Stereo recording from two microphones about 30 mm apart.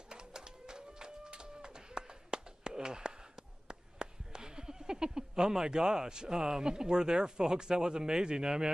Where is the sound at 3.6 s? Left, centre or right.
Right.